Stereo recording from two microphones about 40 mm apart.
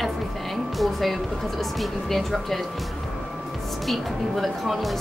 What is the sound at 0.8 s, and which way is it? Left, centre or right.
A woman's voice, centre.